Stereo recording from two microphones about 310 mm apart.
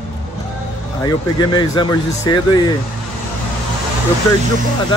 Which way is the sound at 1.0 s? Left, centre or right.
Centre.